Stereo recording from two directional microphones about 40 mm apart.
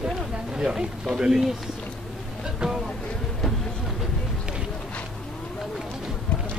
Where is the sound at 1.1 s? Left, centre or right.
Centre.